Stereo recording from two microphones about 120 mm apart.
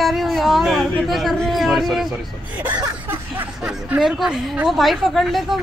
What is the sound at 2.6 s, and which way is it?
Speech, 35° right (ahead or behind).